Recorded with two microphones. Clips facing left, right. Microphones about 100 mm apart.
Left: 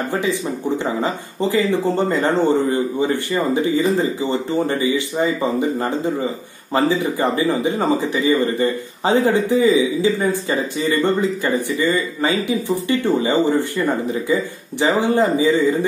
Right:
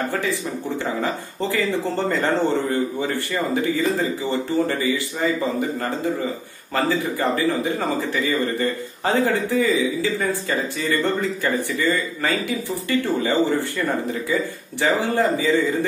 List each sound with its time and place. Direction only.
0.1 s speech: 20° left (ahead or behind)